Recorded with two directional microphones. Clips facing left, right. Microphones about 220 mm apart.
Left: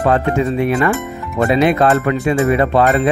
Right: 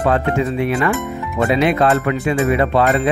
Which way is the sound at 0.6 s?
40° left (ahead or behind).